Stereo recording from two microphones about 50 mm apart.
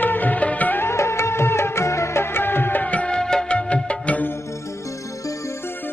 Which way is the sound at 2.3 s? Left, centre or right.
Left.